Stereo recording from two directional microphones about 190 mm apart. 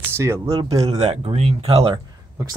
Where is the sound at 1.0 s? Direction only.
30° right (ahead or behind).